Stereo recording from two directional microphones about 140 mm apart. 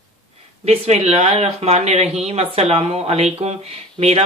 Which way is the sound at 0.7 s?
50° right (ahead or behind).